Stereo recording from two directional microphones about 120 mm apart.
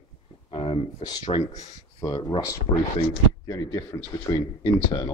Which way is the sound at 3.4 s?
30° left (ahead or behind).